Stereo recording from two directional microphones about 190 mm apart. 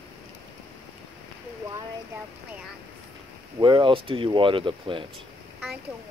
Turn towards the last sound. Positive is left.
turn(degrees=-25)  # may be behind; listen again after turning